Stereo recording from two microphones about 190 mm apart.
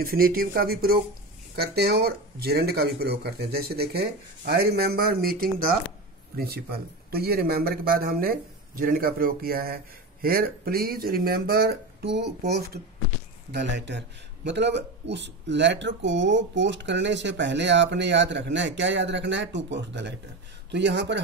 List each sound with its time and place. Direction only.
0.0 s speech: 50° right (ahead or behind)
13.5 s a man's voice: 65° right (ahead or behind)